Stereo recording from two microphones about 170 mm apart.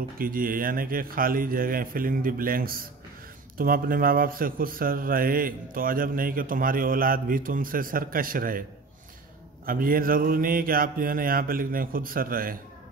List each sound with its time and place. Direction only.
0.2 s a man's voice: 55° right (ahead or behind)
9.7 s a man's voice: 55° right (ahead or behind)